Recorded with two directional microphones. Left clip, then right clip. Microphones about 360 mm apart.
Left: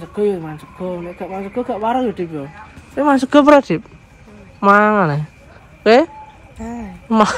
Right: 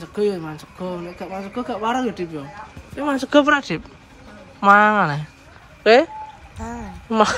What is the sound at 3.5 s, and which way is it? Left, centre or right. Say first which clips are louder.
Speech: left 8 dB; centre.